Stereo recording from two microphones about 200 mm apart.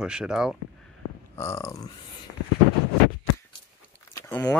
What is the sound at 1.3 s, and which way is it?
Speech, 15° left (ahead or behind).